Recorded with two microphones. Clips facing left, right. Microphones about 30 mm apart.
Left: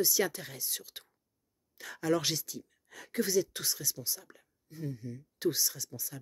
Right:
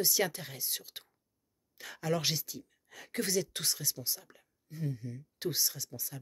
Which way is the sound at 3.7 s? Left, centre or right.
Right.